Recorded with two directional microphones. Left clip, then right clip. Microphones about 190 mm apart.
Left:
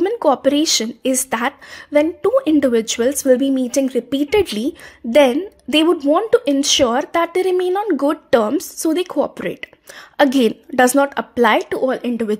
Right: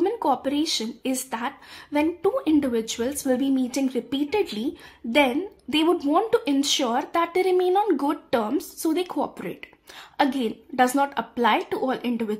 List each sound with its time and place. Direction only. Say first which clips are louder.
0.0 s speech: left 8 dB; 30° left (ahead or behind)
5.9 s speech: left 7 dB; 20° left (ahead or behind)
8.3 s a woman's voice: left 9 dB; 30° left (ahead or behind)